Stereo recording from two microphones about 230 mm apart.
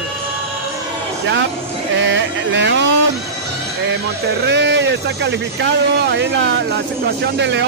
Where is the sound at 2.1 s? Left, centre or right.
Right.